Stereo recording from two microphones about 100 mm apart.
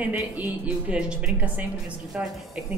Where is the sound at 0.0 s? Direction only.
15° right (ahead or behind).